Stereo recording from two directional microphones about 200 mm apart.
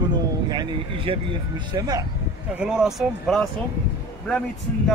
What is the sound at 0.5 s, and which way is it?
Speech, 25° right (ahead or behind).